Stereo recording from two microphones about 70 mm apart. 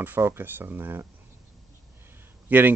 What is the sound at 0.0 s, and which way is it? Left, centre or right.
Speech, right.